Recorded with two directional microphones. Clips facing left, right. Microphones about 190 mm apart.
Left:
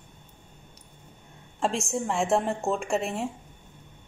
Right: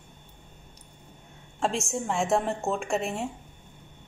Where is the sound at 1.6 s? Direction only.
Centre (ahead or behind).